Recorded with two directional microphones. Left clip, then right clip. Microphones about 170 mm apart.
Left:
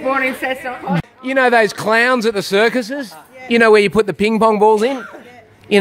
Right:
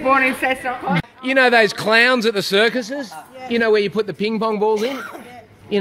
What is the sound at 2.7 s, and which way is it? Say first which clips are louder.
A man's voice: left 3 dB; 50° left (ahead or behind).